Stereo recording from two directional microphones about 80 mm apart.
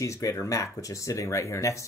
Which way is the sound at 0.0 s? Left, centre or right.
Left.